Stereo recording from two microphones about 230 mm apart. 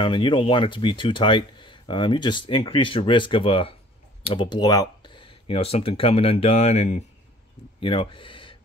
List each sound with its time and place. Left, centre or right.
0.0 s speech: left